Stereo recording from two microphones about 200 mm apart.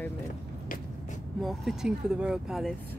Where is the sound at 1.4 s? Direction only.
Centre (ahead or behind).